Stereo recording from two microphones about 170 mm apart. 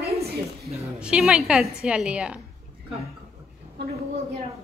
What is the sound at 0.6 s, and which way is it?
A woman's voice, 5° right (ahead or behind).